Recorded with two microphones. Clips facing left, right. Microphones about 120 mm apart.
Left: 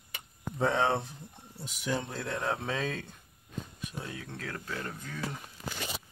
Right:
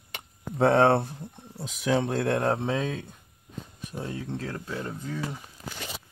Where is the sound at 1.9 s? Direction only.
75° right (ahead or behind).